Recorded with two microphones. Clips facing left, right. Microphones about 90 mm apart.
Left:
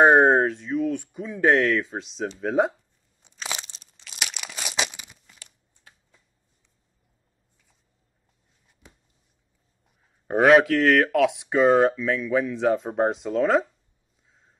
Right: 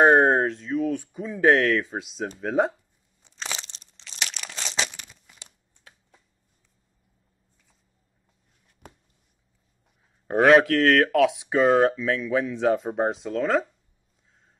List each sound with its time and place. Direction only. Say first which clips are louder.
0.0 s speech: left 1 dB; 5° left (ahead or behind)
3.4 s crumpling: left 1 dB; 10° left (ahead or behind)
8.8 s a sound: right 6 dB; 55° right (ahead or behind)
10.2 s speech: even; centre (ahead or behind)